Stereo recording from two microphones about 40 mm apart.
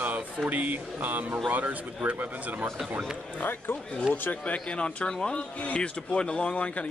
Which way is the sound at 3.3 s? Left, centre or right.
Left.